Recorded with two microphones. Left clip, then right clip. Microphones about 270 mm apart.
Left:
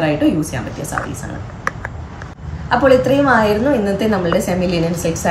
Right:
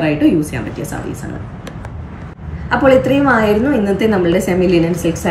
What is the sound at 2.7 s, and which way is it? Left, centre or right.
A woman's voice, centre.